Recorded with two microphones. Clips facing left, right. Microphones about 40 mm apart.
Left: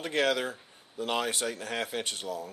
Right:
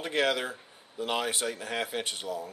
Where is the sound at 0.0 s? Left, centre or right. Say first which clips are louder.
Even; centre.